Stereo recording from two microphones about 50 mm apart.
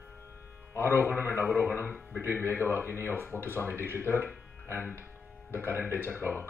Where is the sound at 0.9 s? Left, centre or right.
Left.